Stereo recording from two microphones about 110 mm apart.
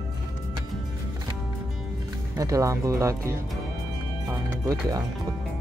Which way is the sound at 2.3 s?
30° right (ahead or behind).